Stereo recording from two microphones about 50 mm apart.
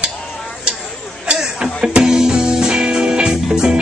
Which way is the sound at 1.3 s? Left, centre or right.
Centre.